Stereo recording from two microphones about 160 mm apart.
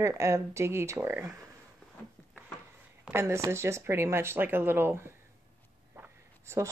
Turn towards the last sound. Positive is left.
turn(degrees=-15)  # may be behind; listen again after turning